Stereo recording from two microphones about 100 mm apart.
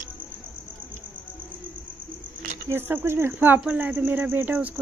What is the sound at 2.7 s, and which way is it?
Speech, 25° right (ahead or behind).